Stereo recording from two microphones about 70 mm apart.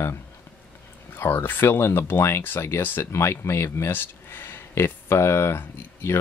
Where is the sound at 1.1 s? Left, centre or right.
Left.